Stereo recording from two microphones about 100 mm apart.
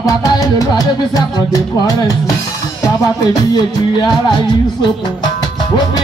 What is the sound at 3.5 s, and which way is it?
Music, 40° left (ahead or behind).